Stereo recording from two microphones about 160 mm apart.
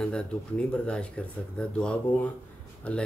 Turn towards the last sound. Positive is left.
turn(degrees=5)  # may be behind; listen again after turning